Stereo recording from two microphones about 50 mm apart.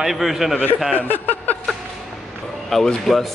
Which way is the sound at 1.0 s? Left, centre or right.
Left.